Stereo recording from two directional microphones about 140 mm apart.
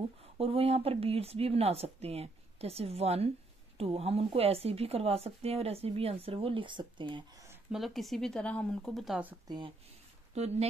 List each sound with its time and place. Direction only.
0.4 s speech: 45° right (ahead or behind)
7.7 s speech: centre (ahead or behind)
9.5 s speech: 35° right (ahead or behind)
10.3 s speech: 50° right (ahead or behind)